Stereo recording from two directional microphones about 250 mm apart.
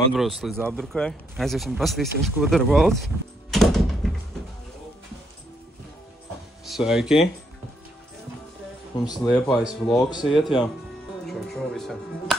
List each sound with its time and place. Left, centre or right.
0.1 s speech: centre
3.5 s door: centre
6.6 s speech: centre
8.9 s speech: centre
9.2 s speech: centre
9.9 s speech: centre
10.2 s speech: centre
11.2 s music: centre